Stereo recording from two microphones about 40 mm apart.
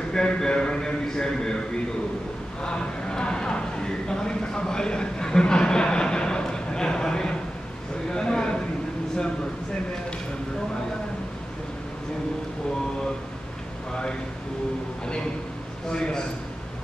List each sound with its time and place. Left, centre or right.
0.1 s a man's voice: centre
2.6 s a sound: left
15.9 s a man's voice: centre